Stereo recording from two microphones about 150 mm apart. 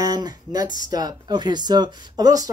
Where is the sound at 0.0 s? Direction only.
25° right (ahead or behind).